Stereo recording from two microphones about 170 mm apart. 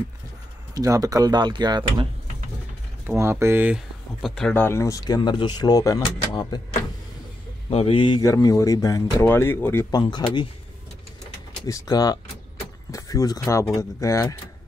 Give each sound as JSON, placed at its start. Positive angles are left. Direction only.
{"t": 0.7, "sound": "speech", "side_deg": -20}
{"t": 3.1, "sound": "speech", "side_deg": -15}
{"t": 4.6, "sound": "speech", "side_deg": 15}
{"t": 7.7, "sound": "speech", "side_deg": 35}
{"t": 11.6, "sound": "speech", "side_deg": 20}